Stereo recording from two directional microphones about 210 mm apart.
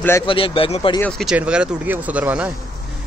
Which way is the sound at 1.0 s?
Centre (ahead or behind).